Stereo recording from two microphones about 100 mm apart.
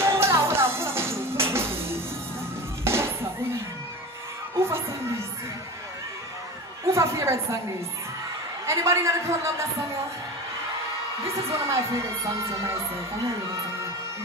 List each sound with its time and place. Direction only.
0.0 s music: 25° right (ahead or behind)
4.6 s music: 25° right (ahead or behind)
6.9 s a sound: 30° right (ahead or behind)
8.6 s speech: 30° right (ahead or behind)
11.2 s speech: 30° right (ahead or behind)